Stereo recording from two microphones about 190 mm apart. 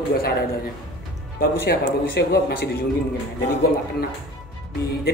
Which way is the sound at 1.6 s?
60° left (ahead or behind).